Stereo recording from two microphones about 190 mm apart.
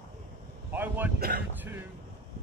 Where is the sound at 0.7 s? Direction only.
10° right (ahead or behind).